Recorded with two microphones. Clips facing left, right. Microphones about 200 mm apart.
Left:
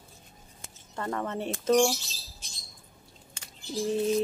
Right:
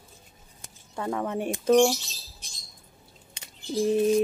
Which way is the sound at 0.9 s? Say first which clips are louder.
Right 3 dB; 10° right (ahead or behind).